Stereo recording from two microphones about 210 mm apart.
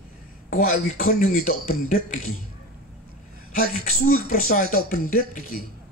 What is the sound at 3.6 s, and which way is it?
Speech, 40° left (ahead or behind).